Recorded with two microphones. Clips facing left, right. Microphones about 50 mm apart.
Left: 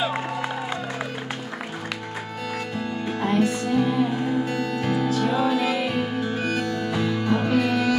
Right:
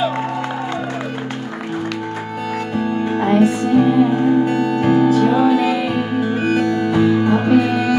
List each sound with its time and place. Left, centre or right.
2.8 s music: right
5.3 s music: centre
6.1 s music: centre